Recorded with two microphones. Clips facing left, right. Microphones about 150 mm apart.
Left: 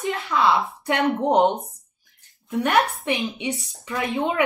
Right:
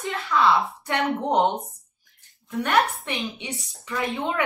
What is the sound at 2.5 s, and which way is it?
Speech, 20° left (ahead or behind).